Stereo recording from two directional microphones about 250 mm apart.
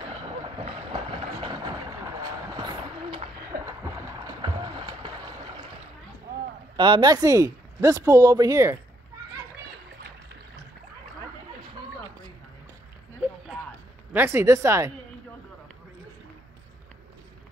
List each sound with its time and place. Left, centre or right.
0.2 s vehicle: right
3.6 s boat: centre
6.8 s speech: centre
14.1 s speech: centre